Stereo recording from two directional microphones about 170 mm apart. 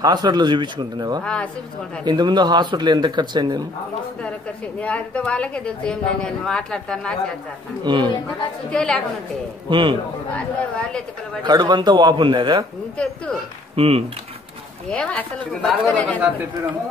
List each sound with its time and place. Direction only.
0.0 s speech: 25° right (ahead or behind)
1.2 s speech: 5° left (ahead or behind)
2.0 s speech: 25° right (ahead or behind)
4.7 s speech: 5° left (ahead or behind)
7.8 s speech: 25° right (ahead or behind)
8.3 s speech: 5° left (ahead or behind)
9.7 s speech: 30° right (ahead or behind)
10.3 s speech: 5° left (ahead or behind)
11.4 s speech: 25° right (ahead or behind)
12.9 s speech: 5° left (ahead or behind)
13.7 s speech: 35° right (ahead or behind)
14.9 s speech: 5° left (ahead or behind)